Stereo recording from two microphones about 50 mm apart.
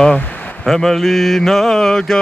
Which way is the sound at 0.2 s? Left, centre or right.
Left.